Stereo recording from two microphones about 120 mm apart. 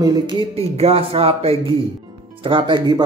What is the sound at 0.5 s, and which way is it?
Speech, 55° right (ahead or behind).